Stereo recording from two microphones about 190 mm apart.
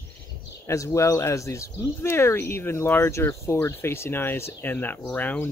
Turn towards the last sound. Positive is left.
turn(degrees=10)  # may be behind; listen again after turning